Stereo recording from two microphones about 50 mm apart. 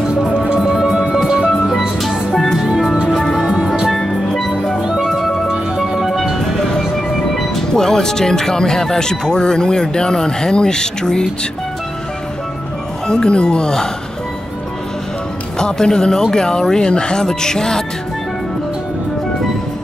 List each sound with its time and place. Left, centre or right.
0.6 s music: centre
1.7 s music: centre
2.6 s music: centre
3.9 s music: centre
5.5 s music: centre
6.5 s music: centre
7.3 s speech: centre
13.0 s speech: centre
15.6 s speech: centre